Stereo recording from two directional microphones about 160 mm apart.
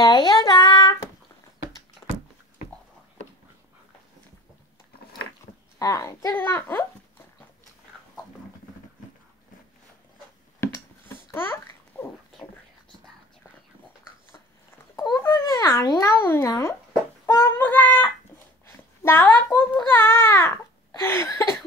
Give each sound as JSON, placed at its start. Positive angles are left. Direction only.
{"t": 0.0, "sound": "child singing", "side_deg": 25}
{"t": 5.8, "sound": "speech", "side_deg": 20}
{"t": 10.6, "sound": "babbling", "side_deg": 15}
{"t": 15.0, "sound": "babbling", "side_deg": 20}
{"t": 17.3, "sound": "a child's voice", "side_deg": 15}